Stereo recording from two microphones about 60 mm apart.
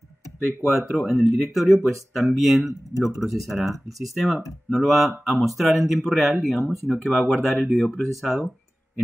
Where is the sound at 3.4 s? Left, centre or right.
Centre.